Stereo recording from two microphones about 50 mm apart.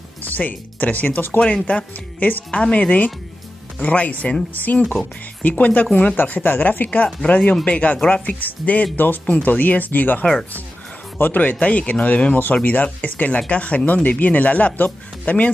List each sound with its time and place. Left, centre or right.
0.2 s speech: left
1.4 s speech: left
2.5 s speech: left
6.1 s speech: left
11.6 s speech: left